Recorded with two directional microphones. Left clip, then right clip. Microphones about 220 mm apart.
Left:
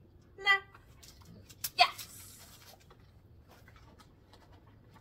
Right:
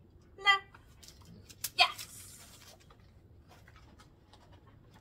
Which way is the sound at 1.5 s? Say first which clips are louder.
Left 1 dB; centre (ahead or behind).